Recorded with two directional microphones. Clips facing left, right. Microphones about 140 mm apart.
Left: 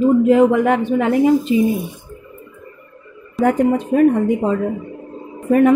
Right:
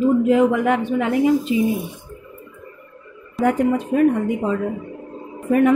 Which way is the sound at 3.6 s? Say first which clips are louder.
Left 3 dB; 30° left (ahead or behind).